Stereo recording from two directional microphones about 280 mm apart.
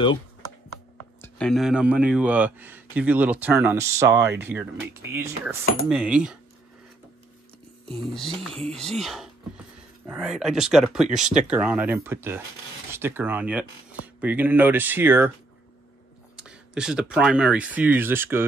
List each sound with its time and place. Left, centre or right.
1.2 s speech: centre
7.9 s speech: centre
16.3 s speech: centre